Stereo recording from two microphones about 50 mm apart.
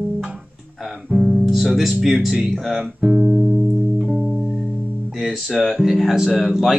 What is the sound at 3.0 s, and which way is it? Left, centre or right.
Speech, centre.